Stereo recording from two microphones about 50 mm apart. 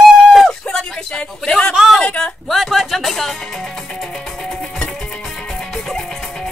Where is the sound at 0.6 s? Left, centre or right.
Centre.